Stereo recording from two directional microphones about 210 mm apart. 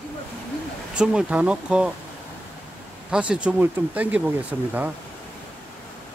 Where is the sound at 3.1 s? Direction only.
5° right (ahead or behind).